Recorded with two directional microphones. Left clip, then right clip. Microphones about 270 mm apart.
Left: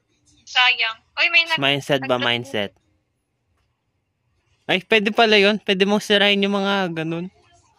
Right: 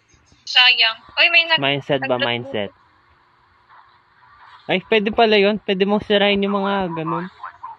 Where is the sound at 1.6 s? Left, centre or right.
Centre.